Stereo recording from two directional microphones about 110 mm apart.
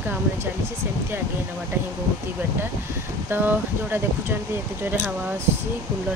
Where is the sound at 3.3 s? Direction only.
20° right (ahead or behind).